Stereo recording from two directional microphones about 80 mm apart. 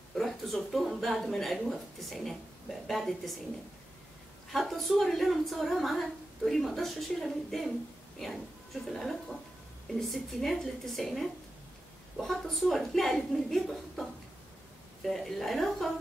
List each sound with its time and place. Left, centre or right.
0.1 s speech: centre
4.5 s speech: centre
8.9 s speech: centre
15.0 s speech: centre